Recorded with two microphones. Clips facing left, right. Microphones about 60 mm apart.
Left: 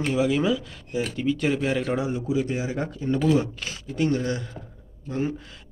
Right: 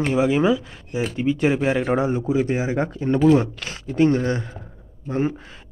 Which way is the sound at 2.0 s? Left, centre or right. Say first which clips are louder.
Right 5 dB; right.